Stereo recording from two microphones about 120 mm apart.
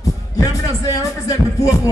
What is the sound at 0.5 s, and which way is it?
Speech, 25° left (ahead or behind).